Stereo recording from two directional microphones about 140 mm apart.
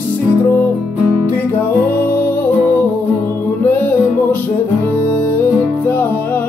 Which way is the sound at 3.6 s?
15° left (ahead or behind).